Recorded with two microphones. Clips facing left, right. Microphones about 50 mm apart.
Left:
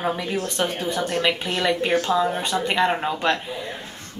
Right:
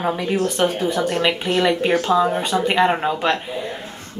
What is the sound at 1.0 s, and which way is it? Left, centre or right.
Speech, right.